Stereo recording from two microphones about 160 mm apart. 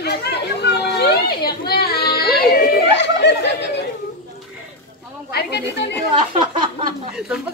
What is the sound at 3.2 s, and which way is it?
Turkey, 90° left.